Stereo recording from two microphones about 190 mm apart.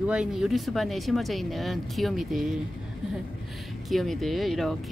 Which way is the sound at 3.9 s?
Centre (ahead or behind).